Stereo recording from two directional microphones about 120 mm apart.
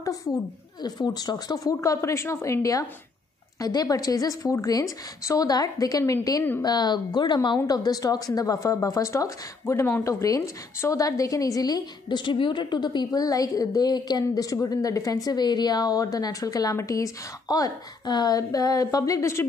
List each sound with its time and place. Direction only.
0.8 s a woman's voice: 35° left (ahead or behind)